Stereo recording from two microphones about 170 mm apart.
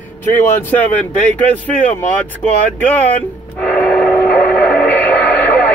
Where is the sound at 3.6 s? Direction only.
5° left (ahead or behind).